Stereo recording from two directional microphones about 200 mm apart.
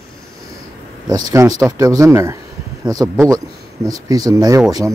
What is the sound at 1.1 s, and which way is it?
Speech, 20° right (ahead or behind).